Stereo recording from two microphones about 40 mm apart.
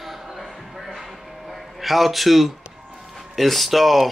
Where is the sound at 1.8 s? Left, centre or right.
Centre.